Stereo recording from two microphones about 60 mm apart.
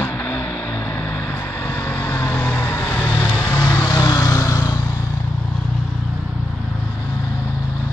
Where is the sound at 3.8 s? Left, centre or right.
Left.